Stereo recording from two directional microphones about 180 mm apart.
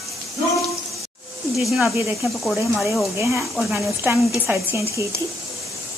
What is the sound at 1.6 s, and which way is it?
Speech, 5° right (ahead or behind).